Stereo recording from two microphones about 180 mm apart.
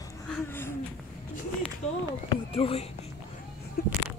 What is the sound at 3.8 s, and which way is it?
Speech, 60° left (ahead or behind).